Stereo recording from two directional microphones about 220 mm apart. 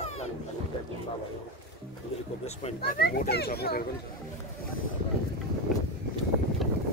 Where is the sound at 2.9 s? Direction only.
45° left (ahead or behind).